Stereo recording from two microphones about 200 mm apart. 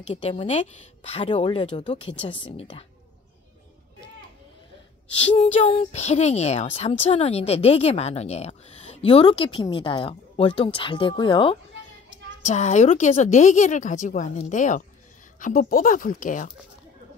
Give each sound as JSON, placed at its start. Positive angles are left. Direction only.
{"t": 0.0, "sound": "speech", "side_deg": 25}
{"t": 5.2, "sound": "speech", "side_deg": 35}
{"t": 12.4, "sound": "speech", "side_deg": 35}